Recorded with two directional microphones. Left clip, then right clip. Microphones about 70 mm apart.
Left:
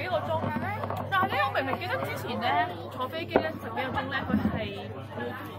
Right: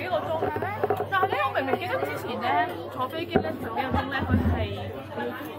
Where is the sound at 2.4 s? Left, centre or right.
Left.